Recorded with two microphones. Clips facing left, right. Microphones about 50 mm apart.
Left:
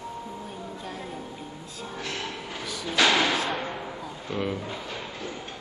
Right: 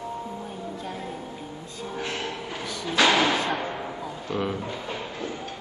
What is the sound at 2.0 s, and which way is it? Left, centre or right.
Train, right.